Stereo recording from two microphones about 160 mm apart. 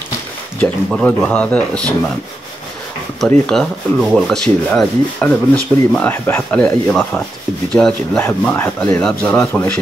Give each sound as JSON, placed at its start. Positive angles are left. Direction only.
{"t": 0.6, "sound": "speech", "side_deg": 5}
{"t": 3.2, "sound": "speech", "side_deg": 5}